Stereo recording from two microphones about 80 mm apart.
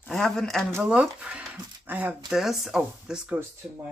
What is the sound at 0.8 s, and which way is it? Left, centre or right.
Speech, centre.